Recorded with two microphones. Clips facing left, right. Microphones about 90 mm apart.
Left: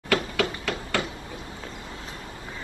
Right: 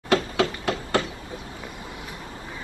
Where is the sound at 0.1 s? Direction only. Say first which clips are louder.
Right 3 dB; 25° right (ahead or behind).